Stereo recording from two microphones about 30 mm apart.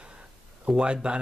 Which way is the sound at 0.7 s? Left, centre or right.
Right.